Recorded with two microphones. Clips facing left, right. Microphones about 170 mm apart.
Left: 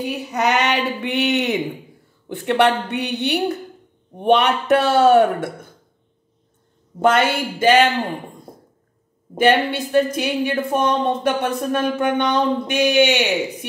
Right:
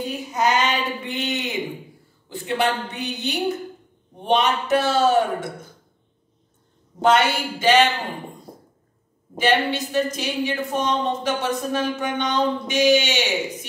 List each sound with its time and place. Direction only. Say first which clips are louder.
0.0 s a woman's voice: left 2 dB; 70° left (ahead or behind)
7.0 s speech: left 2 dB; 50° left (ahead or behind)
9.4 s a woman's voice: left 4 dB; 55° left (ahead or behind)